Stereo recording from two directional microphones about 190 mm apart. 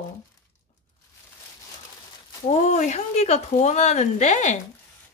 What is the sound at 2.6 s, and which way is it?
A woman's voice, 35° left (ahead or behind).